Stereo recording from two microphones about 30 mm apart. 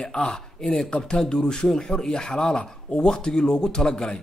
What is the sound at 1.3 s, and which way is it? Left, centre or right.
Speech, left.